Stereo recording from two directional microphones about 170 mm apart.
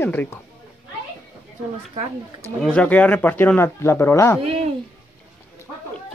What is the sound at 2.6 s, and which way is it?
Speech, 5° left (ahead or behind).